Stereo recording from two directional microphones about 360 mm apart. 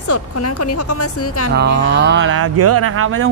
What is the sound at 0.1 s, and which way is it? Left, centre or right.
Speech, left.